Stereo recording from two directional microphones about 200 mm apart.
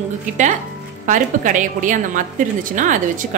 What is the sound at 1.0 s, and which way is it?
A woman's voice, 40° right (ahead or behind).